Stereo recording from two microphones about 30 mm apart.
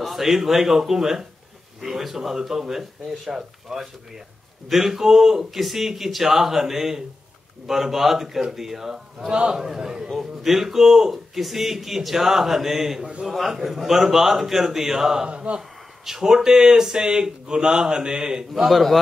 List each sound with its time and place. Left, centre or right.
0.0 s a man's voice: centre
5.6 s a man's voice: centre
9.3 s speech: right
9.6 s a man's voice: centre
15.2 s speech: right
16.1 s speech: centre
18.5 s a man's voice: centre